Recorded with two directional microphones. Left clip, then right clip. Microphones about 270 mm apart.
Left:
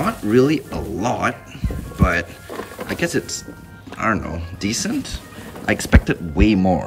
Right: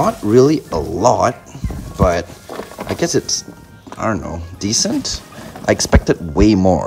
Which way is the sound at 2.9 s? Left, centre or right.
Centre.